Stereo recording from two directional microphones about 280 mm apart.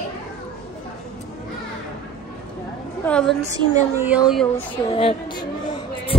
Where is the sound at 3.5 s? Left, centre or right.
Centre.